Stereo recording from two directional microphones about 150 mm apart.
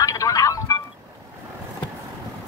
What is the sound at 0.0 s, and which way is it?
Music, 25° left (ahead or behind).